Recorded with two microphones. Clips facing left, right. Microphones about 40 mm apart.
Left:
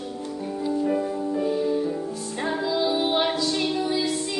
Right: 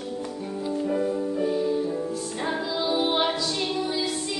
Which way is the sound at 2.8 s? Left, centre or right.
Centre.